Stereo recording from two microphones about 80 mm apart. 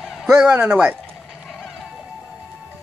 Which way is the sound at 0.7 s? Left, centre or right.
Centre.